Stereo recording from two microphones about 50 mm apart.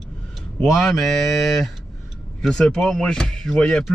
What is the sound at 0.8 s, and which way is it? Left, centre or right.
Mantra, centre.